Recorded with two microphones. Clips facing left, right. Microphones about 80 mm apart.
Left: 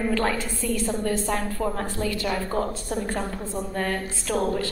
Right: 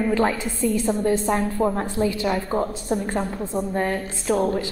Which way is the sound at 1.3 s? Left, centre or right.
Right.